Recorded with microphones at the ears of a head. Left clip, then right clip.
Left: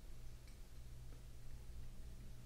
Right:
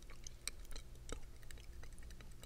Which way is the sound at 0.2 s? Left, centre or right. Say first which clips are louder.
Right 14 dB; right.